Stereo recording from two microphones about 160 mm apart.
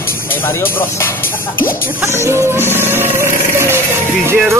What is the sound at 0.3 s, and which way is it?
Music, 15° left (ahead or behind).